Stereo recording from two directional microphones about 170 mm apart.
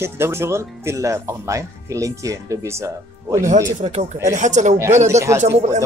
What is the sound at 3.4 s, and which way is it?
Music, 45° right (ahead or behind).